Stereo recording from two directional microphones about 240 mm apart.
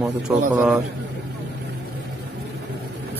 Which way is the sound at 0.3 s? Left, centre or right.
Centre.